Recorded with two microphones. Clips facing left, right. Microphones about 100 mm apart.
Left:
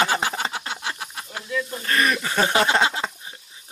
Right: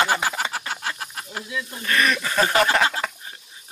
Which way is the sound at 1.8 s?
30° left (ahead or behind).